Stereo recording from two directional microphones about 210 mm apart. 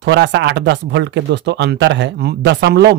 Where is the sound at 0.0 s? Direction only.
60° right (ahead or behind).